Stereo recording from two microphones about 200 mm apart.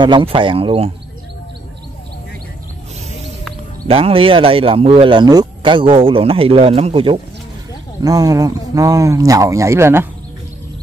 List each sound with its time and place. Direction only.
0.0 s speech: 25° right (ahead or behind)
3.8 s speech: 30° right (ahead or behind); by 10.0 s 15° right (ahead or behind)